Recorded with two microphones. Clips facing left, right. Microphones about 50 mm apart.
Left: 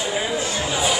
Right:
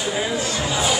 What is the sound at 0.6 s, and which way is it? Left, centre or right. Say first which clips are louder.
Chatter: right 1 dB; centre.